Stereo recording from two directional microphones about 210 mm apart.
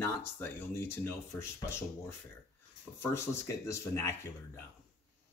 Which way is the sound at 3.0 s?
15° left (ahead or behind).